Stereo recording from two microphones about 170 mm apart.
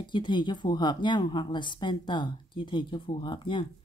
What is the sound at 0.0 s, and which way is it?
Speech, 25° left (ahead or behind).